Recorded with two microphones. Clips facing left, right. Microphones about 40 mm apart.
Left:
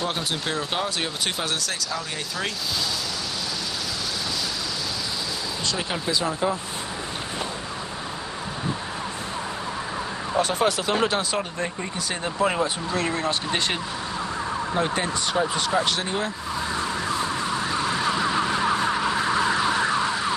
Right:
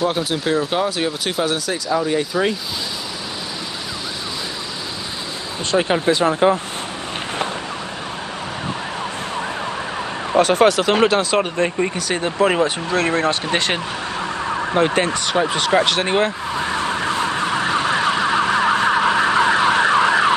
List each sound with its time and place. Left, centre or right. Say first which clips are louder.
0.0 s speech: right 7 dB; centre
1.9 s speech: right 11 dB; centre
5.7 s speech: right 11 dB; right
10.3 s speech: right 9 dB; right
14.7 s vehicle: right 9 dB; right